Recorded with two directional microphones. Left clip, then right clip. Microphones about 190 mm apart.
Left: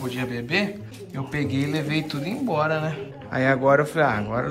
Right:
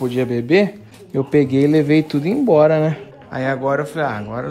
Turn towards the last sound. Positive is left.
turn(degrees=-15)  # may be behind; listen again after turning